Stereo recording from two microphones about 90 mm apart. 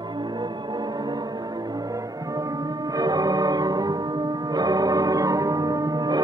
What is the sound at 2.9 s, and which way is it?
Music, 45° right (ahead or behind).